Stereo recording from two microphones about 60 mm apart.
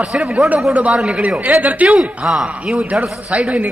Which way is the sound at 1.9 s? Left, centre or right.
Centre.